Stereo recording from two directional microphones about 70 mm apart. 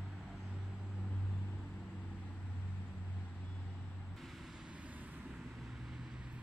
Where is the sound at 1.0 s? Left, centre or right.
Centre.